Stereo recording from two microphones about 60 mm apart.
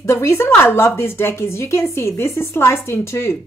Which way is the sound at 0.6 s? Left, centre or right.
Left.